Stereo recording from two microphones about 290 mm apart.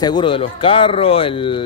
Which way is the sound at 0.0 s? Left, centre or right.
Centre.